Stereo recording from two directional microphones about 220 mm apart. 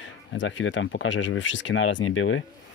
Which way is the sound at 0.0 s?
60° left (ahead or behind).